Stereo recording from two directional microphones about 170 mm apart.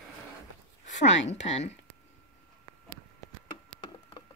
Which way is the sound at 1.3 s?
40° left (ahead or behind).